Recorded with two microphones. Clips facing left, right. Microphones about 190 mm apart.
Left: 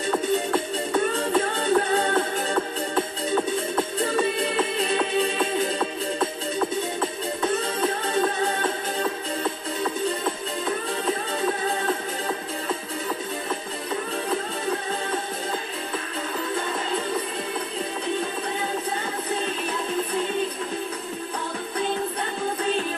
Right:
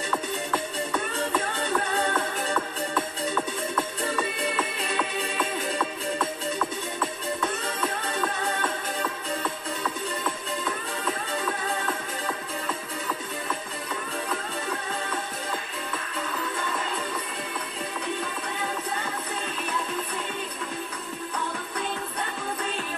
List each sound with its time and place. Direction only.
0.1 s music: 30° left (ahead or behind)